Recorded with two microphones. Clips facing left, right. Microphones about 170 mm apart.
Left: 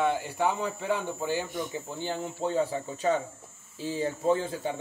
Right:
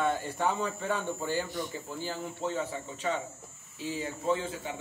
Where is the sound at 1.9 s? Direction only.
25° left (ahead or behind).